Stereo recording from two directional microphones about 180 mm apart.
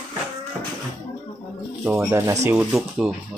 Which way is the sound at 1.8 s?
15° right (ahead or behind).